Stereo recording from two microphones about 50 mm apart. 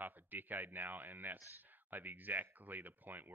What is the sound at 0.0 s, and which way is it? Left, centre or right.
Speech, right.